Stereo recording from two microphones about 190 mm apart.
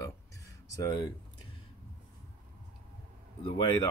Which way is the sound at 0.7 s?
20° left (ahead or behind).